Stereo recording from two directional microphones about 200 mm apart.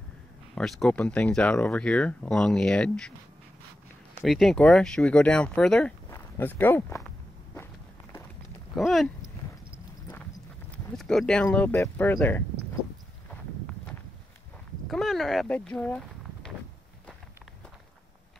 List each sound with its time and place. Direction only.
0.6 s speech: centre (ahead or behind)
4.2 s speech: centre (ahead or behind)
8.7 s speech: centre (ahead or behind)
10.7 s speech: centre (ahead or behind)
14.9 s speech: centre (ahead or behind)